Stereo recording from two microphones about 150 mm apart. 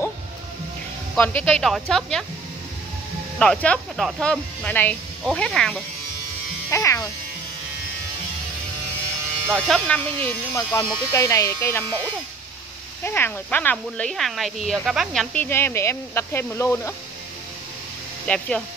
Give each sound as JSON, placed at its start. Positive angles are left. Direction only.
{"t": 1.1, "sound": "speech", "side_deg": 10}
{"t": 3.3, "sound": "speech", "side_deg": 5}
{"t": 6.7, "sound": "speech", "side_deg": 20}
{"t": 9.5, "sound": "speech", "side_deg": 5}
{"t": 10.5, "sound": "speech", "side_deg": 20}
{"t": 13.0, "sound": "speech", "side_deg": 15}
{"t": 15.3, "sound": "speech", "side_deg": 15}
{"t": 18.2, "sound": "speech", "side_deg": 5}